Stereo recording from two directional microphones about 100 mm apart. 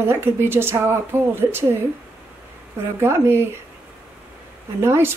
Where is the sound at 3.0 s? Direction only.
25° right (ahead or behind).